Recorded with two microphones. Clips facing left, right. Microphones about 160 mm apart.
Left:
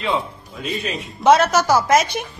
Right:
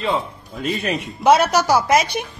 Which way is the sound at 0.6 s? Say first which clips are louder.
Right 3 dB; 55° right (ahead or behind).